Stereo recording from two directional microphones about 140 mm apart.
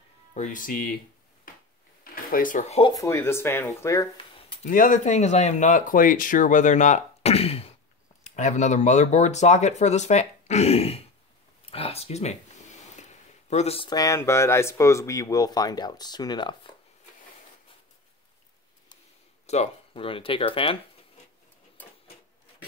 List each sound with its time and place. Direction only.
0.3 s speech: 60° left (ahead or behind); by 0.9 s 85° left
2.3 s speech: 70° left (ahead or behind)
2.9 s speech: 20° left (ahead or behind)
4.6 s speech: 70° left (ahead or behind); by 7.7 s 45° left (ahead or behind)
8.2 s speech: 55° left (ahead or behind)
11.7 s a sound: 45° left (ahead or behind)
13.8 s speech: 25° left (ahead or behind)
19.4 s speech: 50° left (ahead or behind)